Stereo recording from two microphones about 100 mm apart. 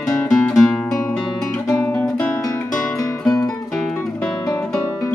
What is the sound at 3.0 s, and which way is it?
Music, 30° left (ahead or behind).